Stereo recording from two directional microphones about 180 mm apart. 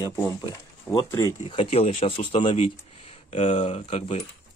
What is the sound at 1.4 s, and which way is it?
Speech, 35° left (ahead or behind).